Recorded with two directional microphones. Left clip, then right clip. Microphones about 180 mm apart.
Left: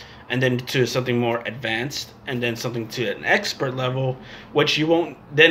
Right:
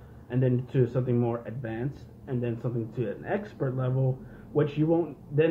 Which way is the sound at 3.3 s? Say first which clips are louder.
Left 14 dB; 35° left (ahead or behind).